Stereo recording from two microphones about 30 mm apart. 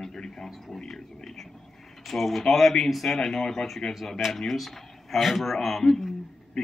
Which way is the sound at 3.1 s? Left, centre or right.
Centre.